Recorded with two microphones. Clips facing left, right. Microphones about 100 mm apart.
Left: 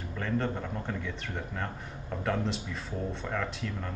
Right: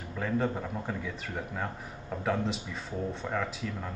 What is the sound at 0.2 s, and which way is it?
Speech, 5° right (ahead or behind).